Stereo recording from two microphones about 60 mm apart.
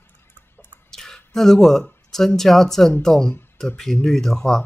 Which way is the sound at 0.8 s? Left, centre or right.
Centre.